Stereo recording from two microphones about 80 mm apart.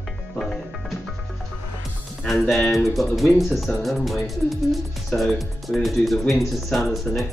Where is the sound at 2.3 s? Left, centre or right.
Centre.